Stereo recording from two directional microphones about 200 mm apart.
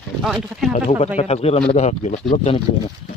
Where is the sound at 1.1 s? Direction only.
30° left (ahead or behind).